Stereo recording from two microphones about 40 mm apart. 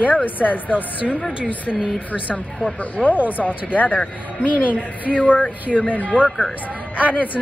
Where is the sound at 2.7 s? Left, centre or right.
Left.